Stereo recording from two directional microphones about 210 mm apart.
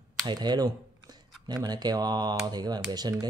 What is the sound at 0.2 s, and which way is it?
Speech, 20° right (ahead or behind).